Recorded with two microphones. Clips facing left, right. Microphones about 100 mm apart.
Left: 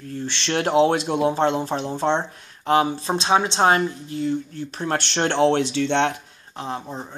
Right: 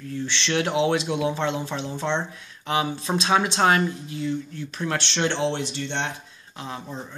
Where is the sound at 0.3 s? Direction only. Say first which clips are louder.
Left 4 dB; 40° left (ahead or behind).